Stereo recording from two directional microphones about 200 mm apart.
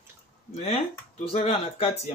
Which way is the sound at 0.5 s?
30° left (ahead or behind).